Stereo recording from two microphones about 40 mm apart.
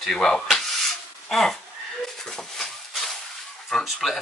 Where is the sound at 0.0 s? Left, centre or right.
Centre.